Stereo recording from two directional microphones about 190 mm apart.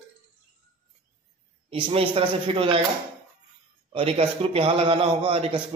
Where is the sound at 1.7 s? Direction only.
25° right (ahead or behind).